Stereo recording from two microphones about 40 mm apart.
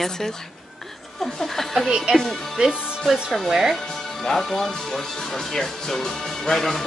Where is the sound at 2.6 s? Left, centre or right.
Right.